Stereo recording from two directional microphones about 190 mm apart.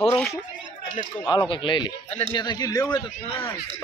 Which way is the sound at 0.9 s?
20° left (ahead or behind).